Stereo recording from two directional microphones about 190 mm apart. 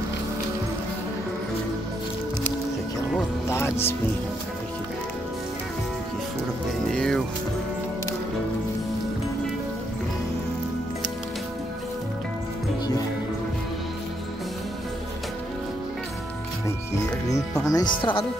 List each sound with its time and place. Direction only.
3.4 s speech: 15° left (ahead or behind)
6.9 s speech: 5° left (ahead or behind)
17.6 s speech: 20° left (ahead or behind)